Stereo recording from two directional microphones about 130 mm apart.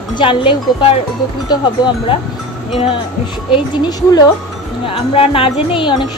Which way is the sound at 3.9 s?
30° left (ahead or behind).